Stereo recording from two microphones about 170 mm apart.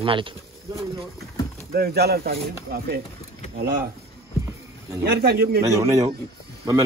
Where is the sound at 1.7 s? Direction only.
65° right (ahead or behind).